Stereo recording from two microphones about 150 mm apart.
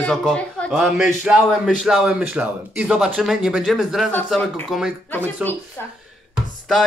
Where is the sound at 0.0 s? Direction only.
5° left (ahead or behind).